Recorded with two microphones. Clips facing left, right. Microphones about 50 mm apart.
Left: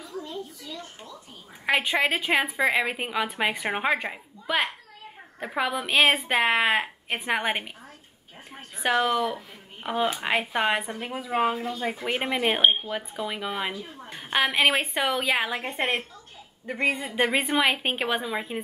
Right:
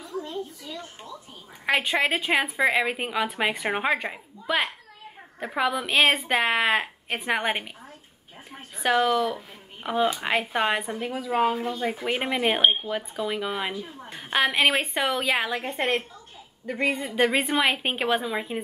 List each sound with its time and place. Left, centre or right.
0.2 s a sound: right
1.7 s a woman's voice: centre
8.7 s a sound: centre
9.0 s a woman's voice: centre
11.0 s speech: centre
12.0 s a woman's voice: centre
17.1 s a woman's voice: centre